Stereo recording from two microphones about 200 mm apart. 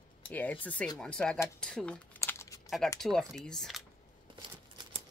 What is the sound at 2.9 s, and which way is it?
Speech, centre (ahead or behind).